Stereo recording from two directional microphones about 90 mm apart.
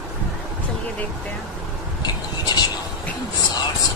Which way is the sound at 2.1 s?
50° left (ahead or behind).